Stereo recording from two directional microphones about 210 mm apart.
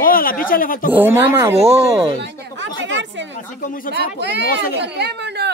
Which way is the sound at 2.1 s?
60° right (ahead or behind).